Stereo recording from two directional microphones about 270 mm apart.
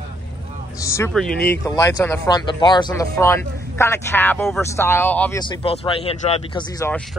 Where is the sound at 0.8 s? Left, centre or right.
Centre.